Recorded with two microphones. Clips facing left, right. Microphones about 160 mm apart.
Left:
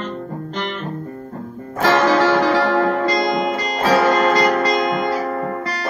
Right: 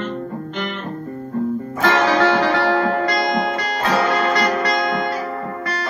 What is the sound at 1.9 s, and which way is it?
Music, 55° left (ahead or behind).